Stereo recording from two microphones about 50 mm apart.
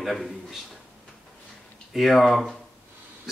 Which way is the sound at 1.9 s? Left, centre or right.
Centre.